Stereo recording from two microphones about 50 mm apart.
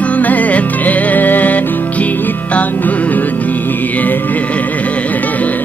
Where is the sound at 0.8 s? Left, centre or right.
Left.